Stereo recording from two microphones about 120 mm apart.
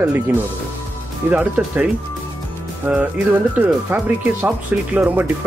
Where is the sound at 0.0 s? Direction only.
15° right (ahead or behind).